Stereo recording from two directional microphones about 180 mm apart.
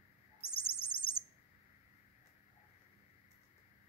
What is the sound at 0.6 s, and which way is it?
Bird, 30° left (ahead or behind).